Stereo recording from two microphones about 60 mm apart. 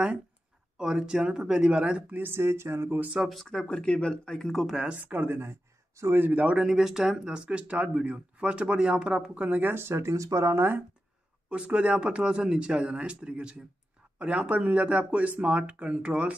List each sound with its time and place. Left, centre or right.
0.7 s speech: centre
2.1 s a sound: right
3.2 s a man's voice: centre
4.8 s speech: right
5.4 s a sound: right
6.2 s speech: right
6.6 s speech: centre
7.4 s speech: right
11.4 s speech: centre